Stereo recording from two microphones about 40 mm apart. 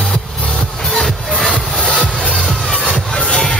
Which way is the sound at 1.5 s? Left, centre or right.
Left.